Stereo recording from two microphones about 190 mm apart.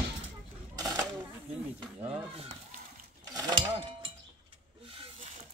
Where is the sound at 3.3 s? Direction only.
20° right (ahead or behind).